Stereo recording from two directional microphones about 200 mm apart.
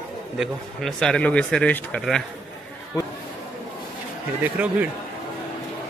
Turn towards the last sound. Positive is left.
turn(degrees=-10)  # may be behind; listen again after turning